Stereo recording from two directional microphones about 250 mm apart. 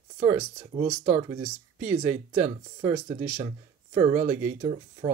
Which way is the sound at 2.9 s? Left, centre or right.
Right.